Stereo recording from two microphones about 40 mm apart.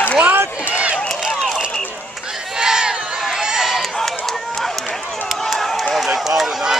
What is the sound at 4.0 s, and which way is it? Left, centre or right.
Run, centre.